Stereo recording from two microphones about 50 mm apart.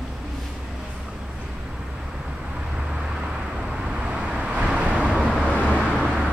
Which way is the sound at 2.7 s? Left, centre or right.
Centre.